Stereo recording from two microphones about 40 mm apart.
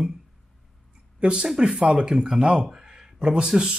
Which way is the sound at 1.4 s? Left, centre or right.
Centre.